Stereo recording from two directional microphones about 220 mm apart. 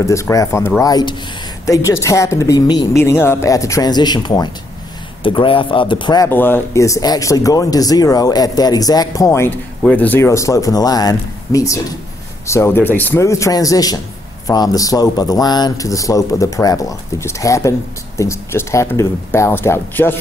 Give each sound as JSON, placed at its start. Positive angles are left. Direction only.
{"t": 0.0, "sound": "speech", "side_deg": 15}